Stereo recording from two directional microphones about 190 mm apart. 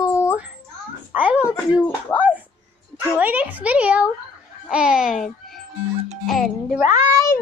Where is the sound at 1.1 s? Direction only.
10° right (ahead or behind).